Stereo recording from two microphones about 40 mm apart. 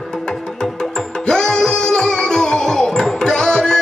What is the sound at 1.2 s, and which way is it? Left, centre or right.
Music, centre.